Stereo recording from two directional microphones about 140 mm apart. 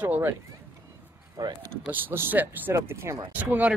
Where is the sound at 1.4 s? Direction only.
30° right (ahead or behind).